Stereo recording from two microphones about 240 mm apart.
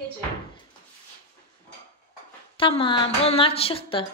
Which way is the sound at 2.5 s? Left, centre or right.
Left.